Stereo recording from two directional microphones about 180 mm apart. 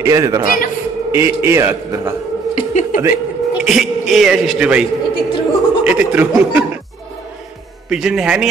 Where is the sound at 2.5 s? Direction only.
40° left (ahead or behind).